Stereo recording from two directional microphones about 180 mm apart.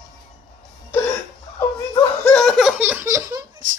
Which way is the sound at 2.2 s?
5° left (ahead or behind).